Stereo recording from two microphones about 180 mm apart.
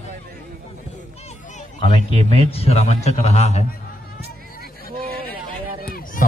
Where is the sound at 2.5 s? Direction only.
35° left (ahead or behind).